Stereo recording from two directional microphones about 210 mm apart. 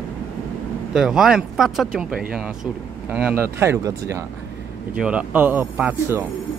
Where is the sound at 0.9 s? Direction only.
5° right (ahead or behind).